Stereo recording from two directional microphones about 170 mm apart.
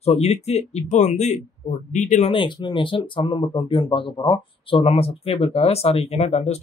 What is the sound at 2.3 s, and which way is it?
Speech, 30° left (ahead or behind).